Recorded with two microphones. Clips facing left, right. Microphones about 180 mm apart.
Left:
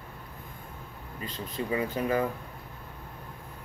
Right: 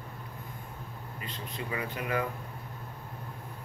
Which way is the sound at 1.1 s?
35° left (ahead or behind).